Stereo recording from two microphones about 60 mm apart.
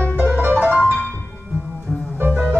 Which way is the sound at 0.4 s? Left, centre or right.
Right.